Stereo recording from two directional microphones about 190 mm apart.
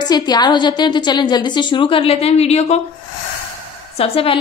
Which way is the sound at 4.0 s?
30° left (ahead or behind).